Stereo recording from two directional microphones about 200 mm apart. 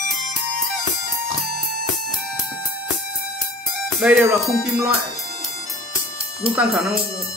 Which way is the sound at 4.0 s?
5° right (ahead or behind).